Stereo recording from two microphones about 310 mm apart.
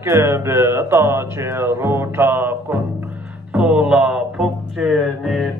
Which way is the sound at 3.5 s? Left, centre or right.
Centre.